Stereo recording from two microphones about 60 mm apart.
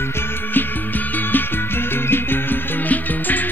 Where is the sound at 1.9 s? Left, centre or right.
Left.